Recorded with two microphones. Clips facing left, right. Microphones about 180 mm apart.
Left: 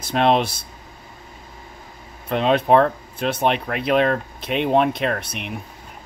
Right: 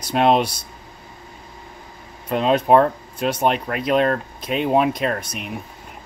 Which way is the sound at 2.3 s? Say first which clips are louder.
Right 1 dB; 5° right (ahead or behind).